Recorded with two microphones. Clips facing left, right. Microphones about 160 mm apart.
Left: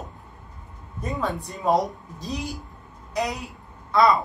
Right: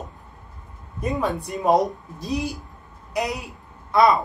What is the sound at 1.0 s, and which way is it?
Speech, 15° right (ahead or behind).